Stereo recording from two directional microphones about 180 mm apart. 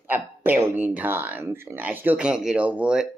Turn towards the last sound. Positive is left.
turn(degrees=-5)  # may be behind; listen again after turning